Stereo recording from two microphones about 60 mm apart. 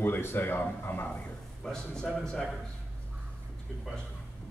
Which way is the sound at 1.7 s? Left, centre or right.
Centre.